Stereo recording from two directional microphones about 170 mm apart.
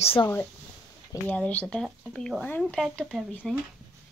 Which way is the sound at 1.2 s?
10° left (ahead or behind).